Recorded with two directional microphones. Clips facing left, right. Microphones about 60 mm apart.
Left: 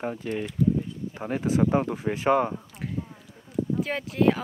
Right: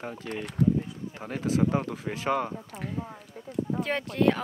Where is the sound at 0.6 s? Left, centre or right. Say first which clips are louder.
Even; right.